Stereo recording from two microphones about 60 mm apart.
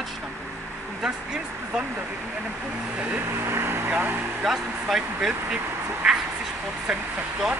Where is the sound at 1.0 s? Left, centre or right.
Centre.